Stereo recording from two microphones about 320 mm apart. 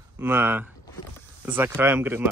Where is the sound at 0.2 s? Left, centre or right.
Centre.